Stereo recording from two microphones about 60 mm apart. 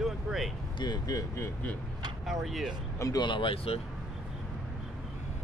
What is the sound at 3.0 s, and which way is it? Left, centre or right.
Speech, left.